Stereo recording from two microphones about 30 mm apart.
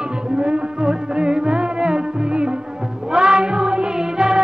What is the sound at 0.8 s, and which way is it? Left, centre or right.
Music, right.